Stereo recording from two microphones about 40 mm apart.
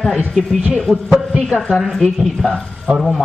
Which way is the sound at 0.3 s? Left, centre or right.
Centre.